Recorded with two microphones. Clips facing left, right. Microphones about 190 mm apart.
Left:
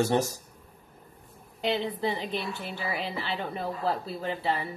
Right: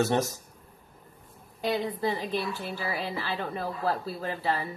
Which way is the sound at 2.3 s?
20° left (ahead or behind).